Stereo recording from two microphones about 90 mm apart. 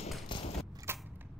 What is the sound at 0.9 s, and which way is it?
Camera, 25° right (ahead or behind).